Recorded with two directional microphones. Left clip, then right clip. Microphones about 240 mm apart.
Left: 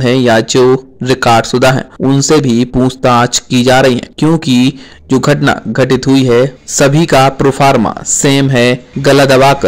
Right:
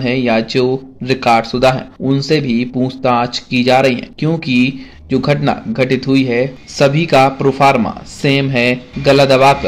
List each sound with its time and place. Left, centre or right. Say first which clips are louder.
0.0 s speech: left 6 dB; left